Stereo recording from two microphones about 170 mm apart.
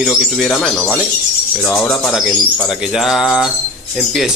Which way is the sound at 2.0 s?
Centre (ahead or behind).